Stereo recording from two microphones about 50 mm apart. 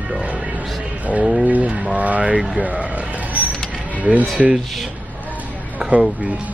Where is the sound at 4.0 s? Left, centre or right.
Right.